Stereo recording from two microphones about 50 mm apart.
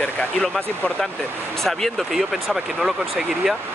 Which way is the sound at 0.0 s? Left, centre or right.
Left.